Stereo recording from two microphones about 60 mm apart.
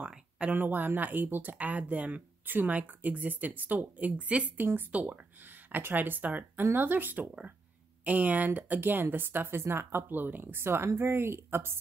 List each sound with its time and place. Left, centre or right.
0.5 s speech: right
5.7 s a woman's voice: right